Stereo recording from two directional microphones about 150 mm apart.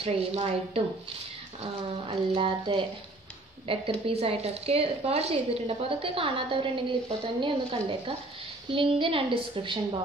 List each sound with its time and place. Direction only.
0.0 s a woman's voice: 40° right (ahead or behind)
8.6 s a woman's voice: 35° right (ahead or behind)